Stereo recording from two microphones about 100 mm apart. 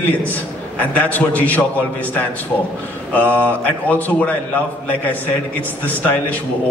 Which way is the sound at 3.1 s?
15° left (ahead or behind).